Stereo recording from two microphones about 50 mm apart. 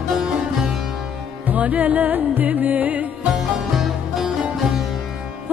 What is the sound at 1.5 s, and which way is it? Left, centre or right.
Music, right.